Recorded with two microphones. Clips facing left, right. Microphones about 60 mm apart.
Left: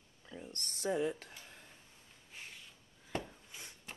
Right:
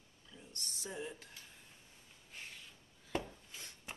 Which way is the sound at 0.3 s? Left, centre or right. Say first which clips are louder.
Left 5 dB; left.